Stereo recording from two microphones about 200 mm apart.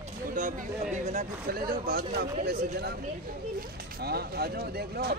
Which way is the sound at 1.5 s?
50° right (ahead or behind).